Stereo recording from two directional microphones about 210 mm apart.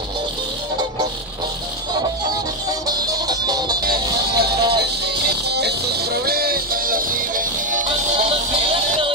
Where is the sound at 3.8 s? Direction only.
45° right (ahead or behind).